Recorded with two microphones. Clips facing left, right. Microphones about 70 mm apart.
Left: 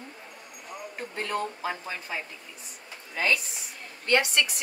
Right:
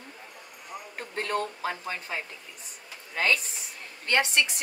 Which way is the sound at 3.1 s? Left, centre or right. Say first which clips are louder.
Even; right.